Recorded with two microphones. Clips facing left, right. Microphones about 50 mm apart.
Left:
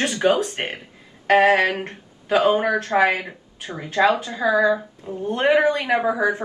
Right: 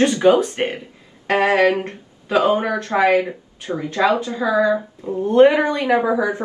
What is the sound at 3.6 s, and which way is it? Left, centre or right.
Speech, left.